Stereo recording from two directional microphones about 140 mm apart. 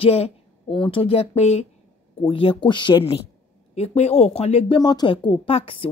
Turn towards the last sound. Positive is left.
turn(degrees=40)  # may be behind; listen again after turning